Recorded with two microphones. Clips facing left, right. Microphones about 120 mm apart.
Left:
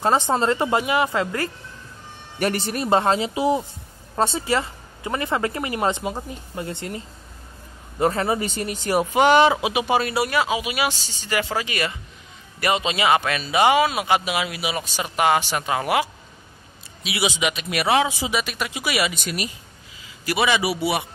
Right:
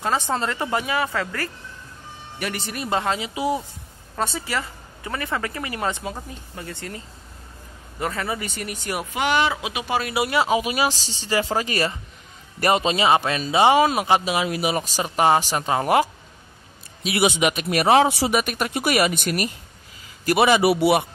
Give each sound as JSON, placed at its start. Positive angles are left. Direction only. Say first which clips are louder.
{"t": 0.4, "sound": "speech", "louder": "left 4 dB", "side_deg": 25}
{"t": 2.3, "sound": "speech", "louder": "left 6 dB", "side_deg": 40}
{"t": 8.0, "sound": "speech", "louder": "left 6 dB", "side_deg": 30}
{"t": 10.1, "sound": "speech", "louder": "even", "side_deg": -20}
{"t": 10.5, "sound": "a woman's voice", "louder": "right 3 dB", "side_deg": -40}
{"t": 13.7, "sound": "a woman's voice", "louder": "right 2 dB", "side_deg": -40}
{"t": 17.0, "sound": "speech", "louder": "right 4 dB", "side_deg": -50}
{"t": 18.0, "sound": "speech", "louder": "right 4 dB", "side_deg": -65}